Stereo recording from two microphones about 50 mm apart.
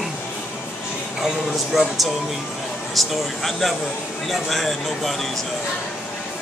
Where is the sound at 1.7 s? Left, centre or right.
Centre.